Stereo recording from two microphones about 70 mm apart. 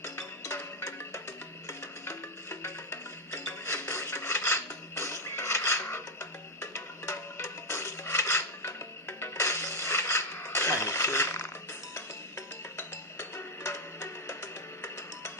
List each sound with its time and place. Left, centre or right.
0.0 s music: left